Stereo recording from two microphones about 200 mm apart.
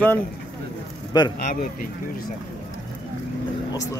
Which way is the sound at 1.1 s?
20° left (ahead or behind).